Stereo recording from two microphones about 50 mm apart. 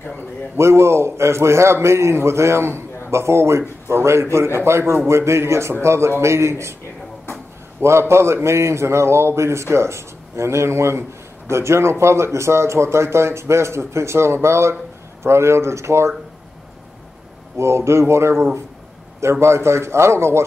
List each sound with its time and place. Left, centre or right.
0.6 s a man's voice: right
7.8 s a man's voice: right
17.6 s a man's voice: right